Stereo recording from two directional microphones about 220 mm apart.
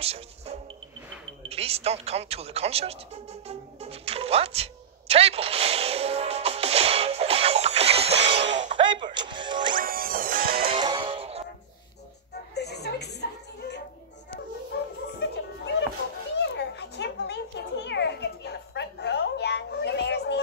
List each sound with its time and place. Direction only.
0.0 s music: 25° right (ahead or behind)
1.4 s speech: 25° right (ahead or behind)
3.4 s music: 30° right (ahead or behind)
8.7 s music: 20° right (ahead or behind)
9.8 s music: 40° right (ahead or behind)
10.7 s music: 20° right (ahead or behind)
12.5 s a sound: 50° left (ahead or behind)
14.3 s music: 50° left (ahead or behind)
16.3 s a sound: 50° left (ahead or behind)